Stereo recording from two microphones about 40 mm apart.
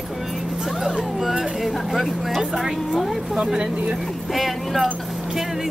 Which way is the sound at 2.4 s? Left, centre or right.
Centre.